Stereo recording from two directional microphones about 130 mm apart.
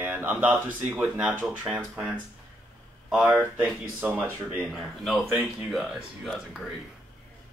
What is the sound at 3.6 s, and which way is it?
Speech, 15° right (ahead or behind).